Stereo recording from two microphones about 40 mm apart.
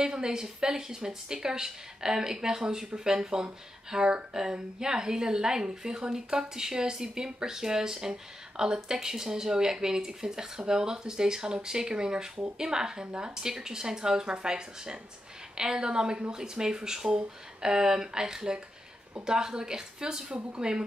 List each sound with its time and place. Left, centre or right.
0.0 s a woman's voice: centre